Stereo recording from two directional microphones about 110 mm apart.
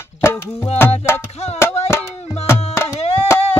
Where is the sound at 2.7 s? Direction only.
25° left (ahead or behind).